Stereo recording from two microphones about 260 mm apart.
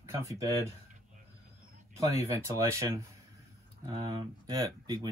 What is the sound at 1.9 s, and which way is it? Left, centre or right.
Speech, centre.